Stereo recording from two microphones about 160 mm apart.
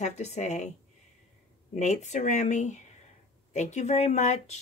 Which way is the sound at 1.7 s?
45° left (ahead or behind).